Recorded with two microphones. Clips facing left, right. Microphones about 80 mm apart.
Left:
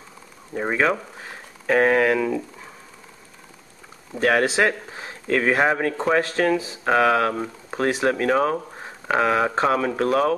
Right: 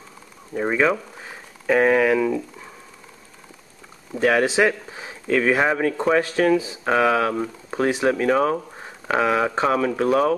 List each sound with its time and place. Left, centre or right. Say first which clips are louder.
0.6 s speech: right 1 dB; centre
4.3 s speech: right 1 dB; centre